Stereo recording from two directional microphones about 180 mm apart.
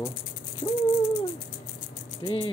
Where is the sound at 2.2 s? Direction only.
30° left (ahead or behind).